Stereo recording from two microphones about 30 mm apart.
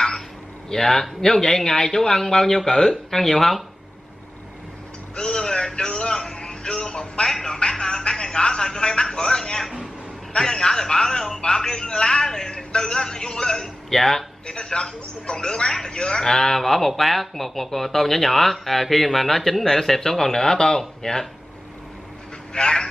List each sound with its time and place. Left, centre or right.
0.7 s a man's voice: centre
5.2 s a man's voice: left
13.8 s speech: centre
14.4 s speech: left
22.5 s a man's voice: left